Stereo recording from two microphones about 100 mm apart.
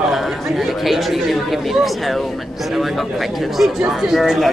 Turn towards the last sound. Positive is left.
turn(degrees=0)  # may be behind; listen again after turning